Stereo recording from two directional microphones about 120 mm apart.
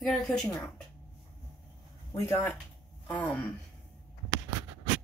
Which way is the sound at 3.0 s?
10° left (ahead or behind).